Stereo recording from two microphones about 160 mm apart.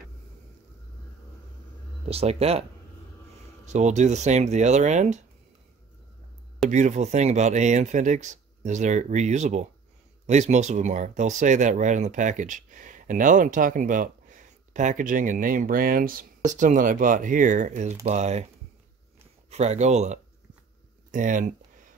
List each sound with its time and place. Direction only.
2.0 s speech: 40° right (ahead or behind)
3.6 s speech: 45° right (ahead or behind)
6.7 s speech: 50° right (ahead or behind)
19.5 s speech: 45° right (ahead or behind)
21.1 s a sound: 55° right (ahead or behind)